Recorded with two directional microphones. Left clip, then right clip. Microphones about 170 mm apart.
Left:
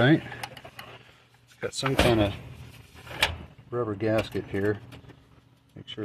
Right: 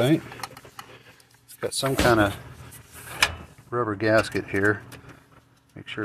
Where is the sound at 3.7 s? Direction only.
20° right (ahead or behind).